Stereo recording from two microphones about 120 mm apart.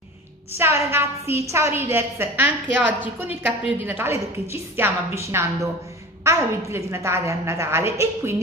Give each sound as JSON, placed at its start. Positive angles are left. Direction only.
{"t": 0.6, "sound": "a woman's voice", "side_deg": -20}